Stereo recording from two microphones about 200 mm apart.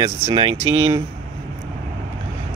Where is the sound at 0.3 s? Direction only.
25° right (ahead or behind).